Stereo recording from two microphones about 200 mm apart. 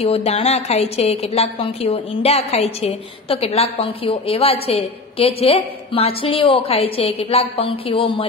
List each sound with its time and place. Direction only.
0.0 s a woman's voice: 30° left (ahead or behind)